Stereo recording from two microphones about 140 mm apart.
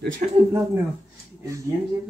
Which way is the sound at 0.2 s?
65° right (ahead or behind).